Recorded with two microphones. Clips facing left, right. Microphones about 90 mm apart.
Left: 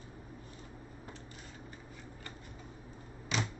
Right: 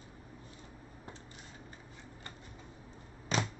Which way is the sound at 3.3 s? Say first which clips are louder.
Right 2 dB; 40° right (ahead or behind).